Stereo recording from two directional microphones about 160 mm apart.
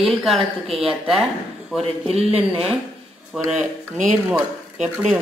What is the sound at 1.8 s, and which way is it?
Speech, 40° right (ahead or behind).